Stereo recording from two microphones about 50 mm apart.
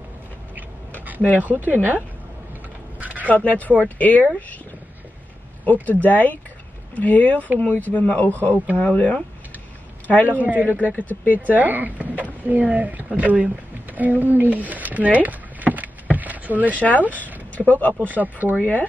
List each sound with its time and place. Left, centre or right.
1.0 s a sound: right
1.4 s a man's voice: right
3.4 s speech: left
5.7 s speech: left
10.2 s a man's voice: right
11.0 s speech: left
11.5 s speech: right
13.9 s a sound: right
16.7 s speech: left
18.0 s a man's voice: right
18.6 s speech: left